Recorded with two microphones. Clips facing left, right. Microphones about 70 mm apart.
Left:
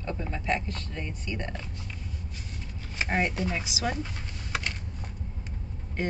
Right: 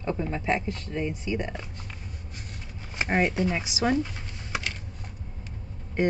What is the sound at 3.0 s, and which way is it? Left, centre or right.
Speech, centre.